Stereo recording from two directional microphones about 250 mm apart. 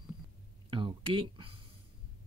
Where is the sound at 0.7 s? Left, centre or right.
Centre.